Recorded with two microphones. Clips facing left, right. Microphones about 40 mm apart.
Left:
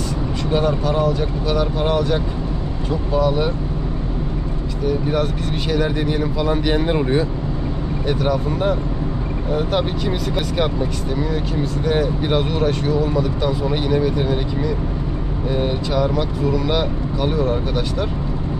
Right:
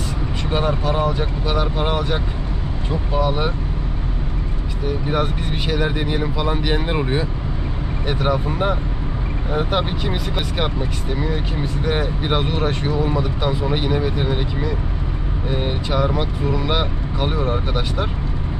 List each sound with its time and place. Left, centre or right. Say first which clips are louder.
0.5 s speech: left 2 dB; right
4.8 s speech: left 2 dB; centre